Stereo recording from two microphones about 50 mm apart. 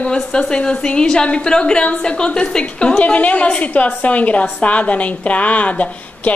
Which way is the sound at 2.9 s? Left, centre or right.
Left.